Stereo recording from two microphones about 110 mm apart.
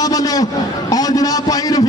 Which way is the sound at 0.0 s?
35° left (ahead or behind).